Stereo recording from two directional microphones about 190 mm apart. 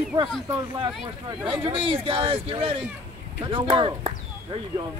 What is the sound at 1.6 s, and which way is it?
Speech, 30° right (ahead or behind).